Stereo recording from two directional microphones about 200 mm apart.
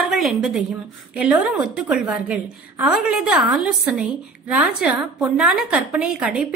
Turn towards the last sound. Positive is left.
turn(degrees=-5)  # may be behind; listen again after turning